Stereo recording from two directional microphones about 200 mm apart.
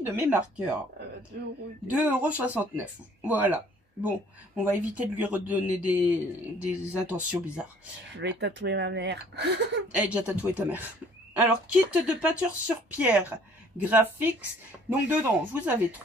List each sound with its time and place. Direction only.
0.0 s speech: 10° right (ahead or behind)
1.9 s speech: 10° right (ahead or behind)
8.1 s speech: 60° right (ahead or behind)
9.9 s speech: 5° right (ahead or behind)